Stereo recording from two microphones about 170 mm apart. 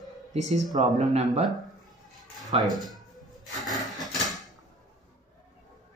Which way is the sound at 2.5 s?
35° right (ahead or behind).